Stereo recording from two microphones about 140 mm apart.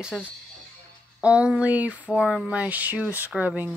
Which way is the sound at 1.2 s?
10° right (ahead or behind).